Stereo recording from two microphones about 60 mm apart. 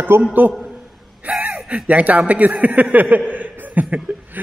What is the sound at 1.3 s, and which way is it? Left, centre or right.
Gasp, right.